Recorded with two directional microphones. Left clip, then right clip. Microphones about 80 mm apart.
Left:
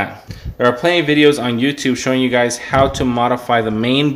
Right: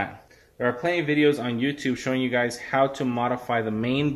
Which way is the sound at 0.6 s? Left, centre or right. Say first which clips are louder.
Left 11 dB; left.